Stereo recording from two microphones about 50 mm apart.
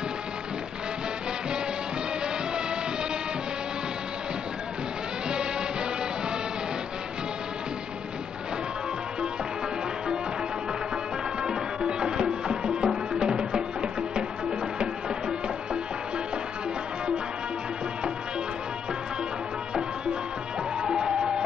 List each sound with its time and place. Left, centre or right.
11.4 s music: centre
20.8 s music: centre